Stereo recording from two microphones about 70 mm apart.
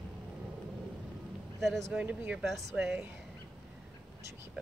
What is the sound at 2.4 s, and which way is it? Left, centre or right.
Speech, centre.